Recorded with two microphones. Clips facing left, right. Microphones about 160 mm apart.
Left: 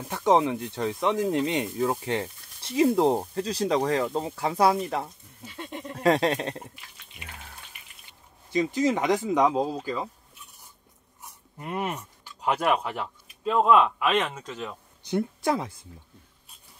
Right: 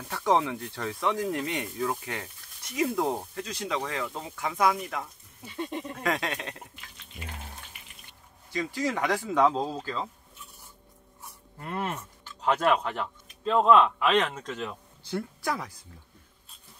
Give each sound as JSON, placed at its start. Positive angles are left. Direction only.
{"t": 0.1, "sound": "speech", "side_deg": 20}
{"t": 5.9, "sound": "a sound", "side_deg": 35}
{"t": 8.5, "sound": "speech", "side_deg": 20}
{"t": 11.5, "sound": "speech", "side_deg": 15}
{"t": 15.0, "sound": "speech", "side_deg": 20}